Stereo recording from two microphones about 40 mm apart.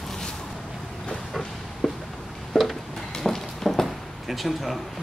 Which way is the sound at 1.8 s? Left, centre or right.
Centre.